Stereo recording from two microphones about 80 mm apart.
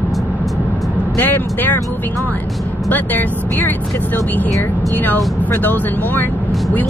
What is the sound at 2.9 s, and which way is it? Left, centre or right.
Speech, left.